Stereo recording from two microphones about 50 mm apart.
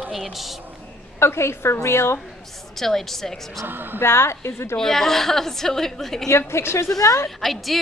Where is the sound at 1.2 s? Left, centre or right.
Left.